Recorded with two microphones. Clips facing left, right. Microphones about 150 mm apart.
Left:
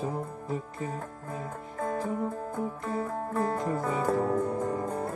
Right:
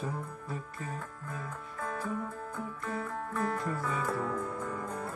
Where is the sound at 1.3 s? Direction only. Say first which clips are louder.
Left 4 dB; 40° left (ahead or behind).